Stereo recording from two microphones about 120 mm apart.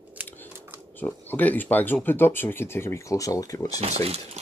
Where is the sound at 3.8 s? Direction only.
60° right (ahead or behind).